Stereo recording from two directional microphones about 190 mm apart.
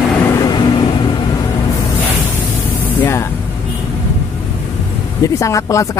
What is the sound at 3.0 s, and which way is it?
Speech, 10° left (ahead or behind).